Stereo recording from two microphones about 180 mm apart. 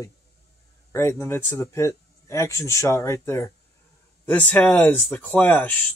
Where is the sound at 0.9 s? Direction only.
15° left (ahead or behind).